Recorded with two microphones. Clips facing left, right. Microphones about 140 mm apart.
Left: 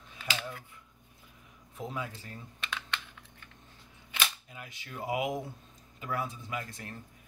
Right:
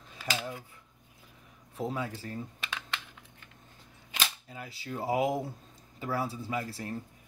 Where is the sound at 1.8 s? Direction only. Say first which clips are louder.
Right 4 dB; 30° right (ahead or behind).